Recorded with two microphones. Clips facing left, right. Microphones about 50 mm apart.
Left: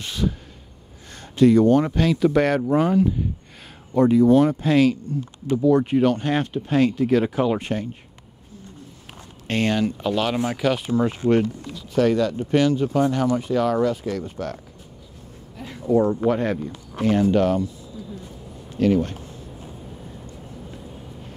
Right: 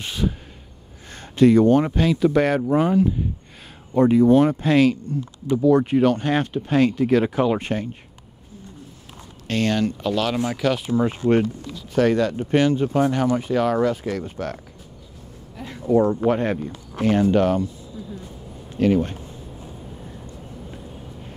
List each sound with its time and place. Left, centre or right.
0.0 s speech: right
1.0 s a sound: right
1.9 s speech: centre
3.9 s speech: right
4.6 s speech: right
5.6 s speech: right
7.6 s speech: right
9.5 s speech: left; by 11.1 s centre
11.9 s speech: right
15.9 s speech: right
17.0 s speech: right
18.8 s speech: right